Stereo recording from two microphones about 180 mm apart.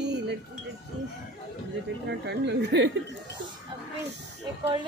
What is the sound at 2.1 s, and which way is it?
Speech, 70° right (ahead or behind).